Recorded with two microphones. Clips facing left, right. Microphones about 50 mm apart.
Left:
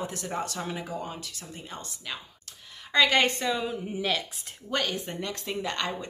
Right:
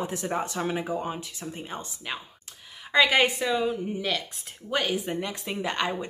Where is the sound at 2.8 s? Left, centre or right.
Centre.